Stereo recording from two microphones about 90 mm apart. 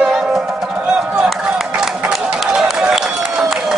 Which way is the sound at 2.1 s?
5° right (ahead or behind).